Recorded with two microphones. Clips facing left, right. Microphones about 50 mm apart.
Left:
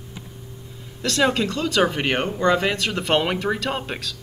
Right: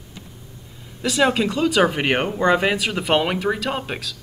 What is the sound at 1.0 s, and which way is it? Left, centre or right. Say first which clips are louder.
Speech: right 2 dB; centre.